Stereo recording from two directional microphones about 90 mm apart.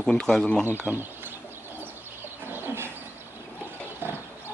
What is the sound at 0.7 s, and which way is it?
Speech, 25° right (ahead or behind).